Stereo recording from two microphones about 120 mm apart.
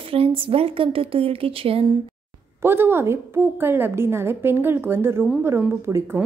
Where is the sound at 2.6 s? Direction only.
20° right (ahead or behind).